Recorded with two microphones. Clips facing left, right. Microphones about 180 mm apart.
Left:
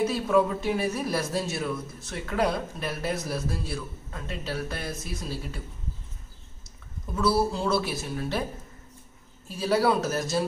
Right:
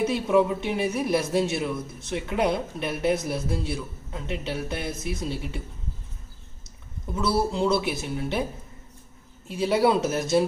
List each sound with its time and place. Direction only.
0.0 s speech: 20° right (ahead or behind)
7.2 s speech: 20° right (ahead or behind)
9.5 s speech: 20° right (ahead or behind)